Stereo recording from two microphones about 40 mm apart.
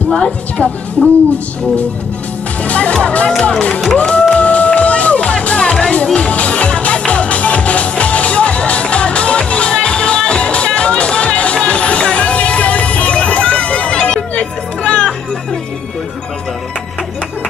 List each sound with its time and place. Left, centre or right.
0.1 s a woman's voice: left
2.6 s music: left
2.9 s a woman's voice: left
4.1 s music: left